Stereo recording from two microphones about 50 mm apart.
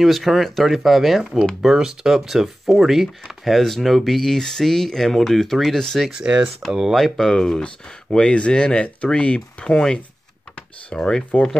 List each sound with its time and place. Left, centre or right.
0.0 s speech: centre
6.1 s speech: centre
6.7 s speech: centre
7.2 s speech: centre
7.6 s speech: left